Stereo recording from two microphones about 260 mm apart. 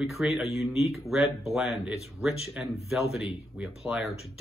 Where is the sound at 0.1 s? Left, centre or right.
Centre.